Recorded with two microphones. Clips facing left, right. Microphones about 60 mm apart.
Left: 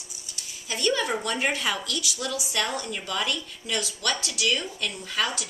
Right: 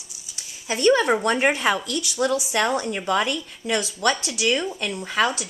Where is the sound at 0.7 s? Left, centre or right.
Right.